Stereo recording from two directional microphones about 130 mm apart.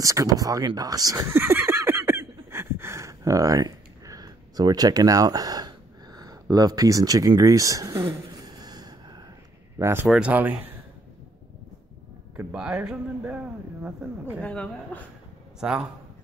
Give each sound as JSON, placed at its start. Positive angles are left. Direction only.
{"t": 0.0, "sound": "a sound", "side_deg": -25}
{"t": 9.8, "sound": "speech", "side_deg": -20}
{"t": 10.0, "sound": "speech", "side_deg": -5}
{"t": 12.5, "sound": "speech", "side_deg": -5}
{"t": 14.4, "sound": "a woman's voice", "side_deg": 10}